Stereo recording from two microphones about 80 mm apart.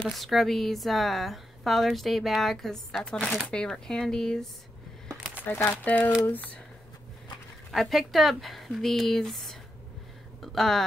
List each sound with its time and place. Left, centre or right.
0.0 s speech: centre
5.4 s speech: left
7.7 s speech: centre